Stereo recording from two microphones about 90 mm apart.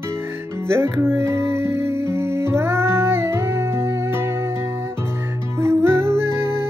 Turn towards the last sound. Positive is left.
turn(degrees=-30)  # may be behind; listen again after turning